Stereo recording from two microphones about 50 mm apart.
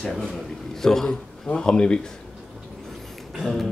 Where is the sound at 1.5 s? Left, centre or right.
Centre.